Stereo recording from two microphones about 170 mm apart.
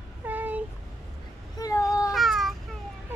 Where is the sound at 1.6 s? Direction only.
20° left (ahead or behind).